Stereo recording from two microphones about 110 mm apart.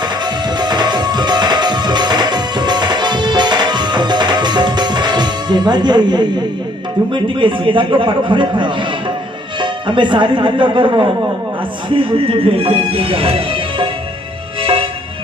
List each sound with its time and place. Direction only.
0.0 s music: 40° right (ahead or behind)
7.1 s a man's voice: 50° right (ahead or behind)
14.6 s music: 55° right (ahead or behind)